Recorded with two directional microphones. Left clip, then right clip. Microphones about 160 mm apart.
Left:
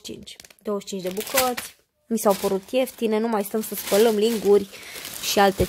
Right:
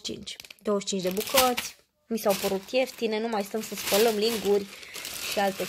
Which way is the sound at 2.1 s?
40° left (ahead or behind).